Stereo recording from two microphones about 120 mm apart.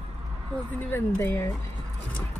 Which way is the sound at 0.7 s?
15° left (ahead or behind).